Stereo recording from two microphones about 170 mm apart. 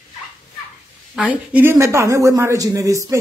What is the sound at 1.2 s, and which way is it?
A woman's voice, 10° right (ahead or behind).